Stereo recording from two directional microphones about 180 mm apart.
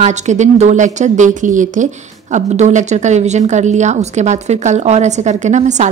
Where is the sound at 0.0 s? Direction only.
40° right (ahead or behind).